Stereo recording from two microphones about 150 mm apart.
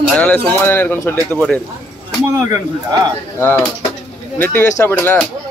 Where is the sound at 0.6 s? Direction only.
15° left (ahead or behind).